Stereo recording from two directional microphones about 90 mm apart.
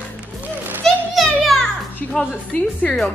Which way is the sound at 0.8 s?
5° left (ahead or behind).